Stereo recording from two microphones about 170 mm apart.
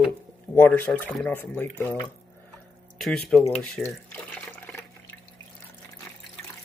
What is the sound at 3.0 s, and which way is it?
Speech, 5° left (ahead or behind).